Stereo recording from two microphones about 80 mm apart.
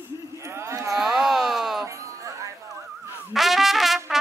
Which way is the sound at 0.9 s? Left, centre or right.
Centre.